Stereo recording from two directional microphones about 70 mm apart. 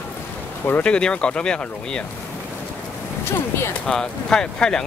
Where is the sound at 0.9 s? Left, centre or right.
Centre.